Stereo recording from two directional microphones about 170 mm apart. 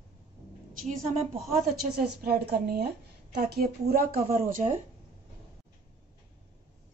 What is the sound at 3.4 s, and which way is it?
Speech, 70° right (ahead or behind).